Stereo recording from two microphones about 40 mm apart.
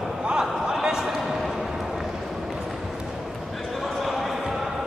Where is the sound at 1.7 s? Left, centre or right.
Centre.